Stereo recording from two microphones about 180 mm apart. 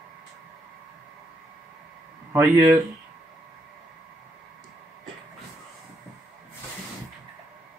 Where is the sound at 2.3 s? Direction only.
20° right (ahead or behind).